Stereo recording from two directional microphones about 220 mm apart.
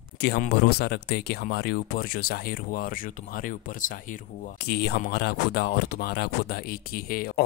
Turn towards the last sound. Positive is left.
turn(degrees=40)  # may be behind; listen again after turning